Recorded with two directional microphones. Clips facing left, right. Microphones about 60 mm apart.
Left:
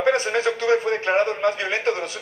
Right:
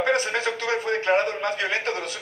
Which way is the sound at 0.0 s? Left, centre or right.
Left.